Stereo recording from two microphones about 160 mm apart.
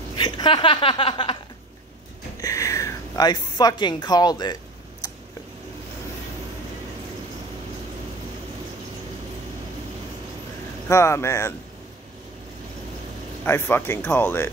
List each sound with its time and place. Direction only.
0.1 s a woman's voice: 30° left (ahead or behind)
2.4 s a woman's voice: 20° left (ahead or behind)
5.0 s a sound: 20° left (ahead or behind)
10.9 s speech: 15° left (ahead or behind)
13.5 s speech: 15° left (ahead or behind)